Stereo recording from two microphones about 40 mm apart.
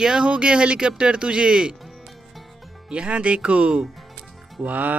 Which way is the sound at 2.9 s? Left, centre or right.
Right.